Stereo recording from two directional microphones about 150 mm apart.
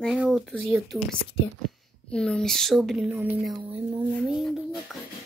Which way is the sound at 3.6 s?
40° right (ahead or behind).